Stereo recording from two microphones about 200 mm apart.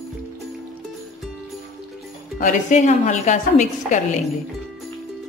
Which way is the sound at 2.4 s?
40° left (ahead or behind).